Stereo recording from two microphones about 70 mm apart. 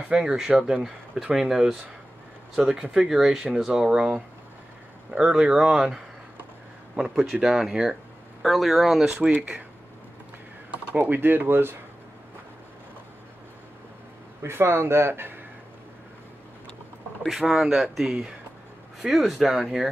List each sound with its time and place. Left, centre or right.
0.1 s speech: centre
7.0 s speech: centre
11.0 s speech: right
14.4 s speech: right
17.3 s speech: centre